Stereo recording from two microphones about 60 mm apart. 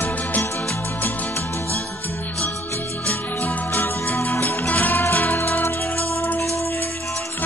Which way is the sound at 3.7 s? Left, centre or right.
Left.